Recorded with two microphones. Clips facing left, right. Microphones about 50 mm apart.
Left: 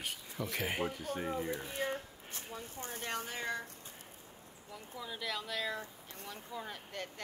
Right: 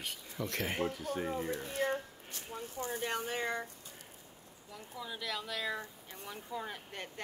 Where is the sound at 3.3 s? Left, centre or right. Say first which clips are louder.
Right 3 dB; right.